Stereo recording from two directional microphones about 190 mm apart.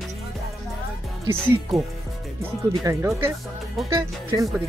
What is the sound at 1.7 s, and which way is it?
Music, centre (ahead or behind).